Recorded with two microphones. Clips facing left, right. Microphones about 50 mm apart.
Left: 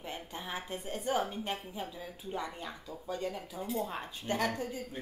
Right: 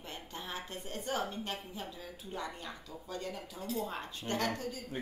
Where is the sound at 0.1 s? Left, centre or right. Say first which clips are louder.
Left 2 dB; centre.